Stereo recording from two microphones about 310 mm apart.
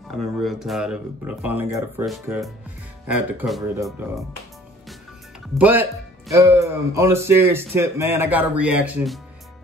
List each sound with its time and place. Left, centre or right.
0.1 s speech: centre
5.5 s speech: centre